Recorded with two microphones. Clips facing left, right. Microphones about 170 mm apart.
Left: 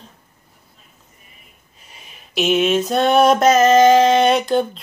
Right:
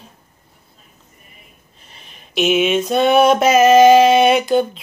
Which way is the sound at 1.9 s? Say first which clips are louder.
Right 1 dB; 5° left (ahead or behind).